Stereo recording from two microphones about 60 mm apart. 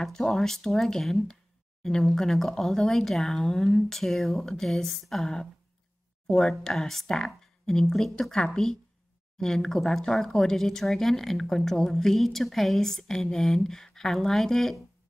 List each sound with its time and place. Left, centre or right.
0.0 s speech: centre